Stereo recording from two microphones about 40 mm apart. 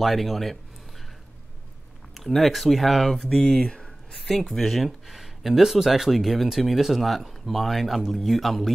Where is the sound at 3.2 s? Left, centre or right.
Centre.